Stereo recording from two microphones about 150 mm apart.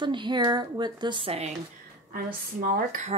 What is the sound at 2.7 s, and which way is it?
Speech, 60° right (ahead or behind).